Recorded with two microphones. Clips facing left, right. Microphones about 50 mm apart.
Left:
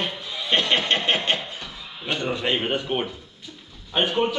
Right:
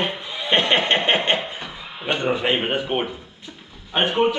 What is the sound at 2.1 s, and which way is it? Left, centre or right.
Speech, right.